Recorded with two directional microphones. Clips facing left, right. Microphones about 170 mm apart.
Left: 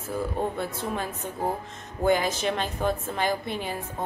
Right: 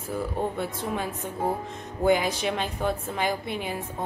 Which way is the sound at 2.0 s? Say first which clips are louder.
Right 1 dB; 10° right (ahead or behind).